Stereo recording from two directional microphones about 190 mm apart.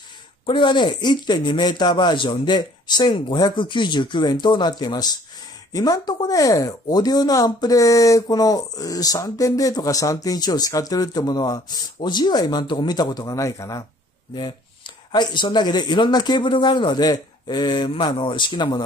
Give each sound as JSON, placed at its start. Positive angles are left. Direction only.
{"t": 0.5, "sound": "speech", "side_deg": 25}
{"t": 15.1, "sound": "speech", "side_deg": 25}